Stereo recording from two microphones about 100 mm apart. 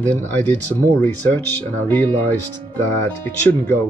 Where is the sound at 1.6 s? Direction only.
15° left (ahead or behind).